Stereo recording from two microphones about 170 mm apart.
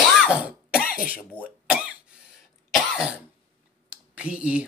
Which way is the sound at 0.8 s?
55° left (ahead or behind).